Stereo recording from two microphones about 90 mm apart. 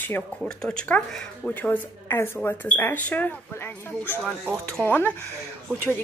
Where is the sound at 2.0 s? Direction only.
25° left (ahead or behind).